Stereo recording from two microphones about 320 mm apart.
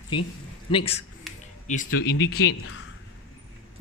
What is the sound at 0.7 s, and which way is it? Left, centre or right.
Speech, centre.